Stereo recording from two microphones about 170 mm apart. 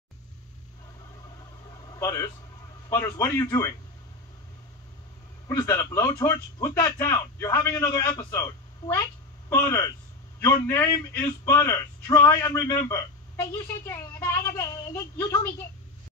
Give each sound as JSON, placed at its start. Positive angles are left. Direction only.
{"t": 2.0, "sound": "a man's voice", "side_deg": 15}
{"t": 5.5, "sound": "a man's voice", "side_deg": 20}